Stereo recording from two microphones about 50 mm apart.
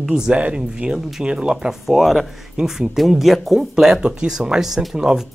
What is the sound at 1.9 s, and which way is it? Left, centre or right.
Speech, centre.